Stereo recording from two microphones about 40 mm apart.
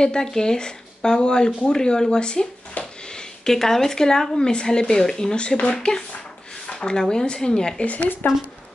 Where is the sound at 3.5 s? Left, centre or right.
Centre.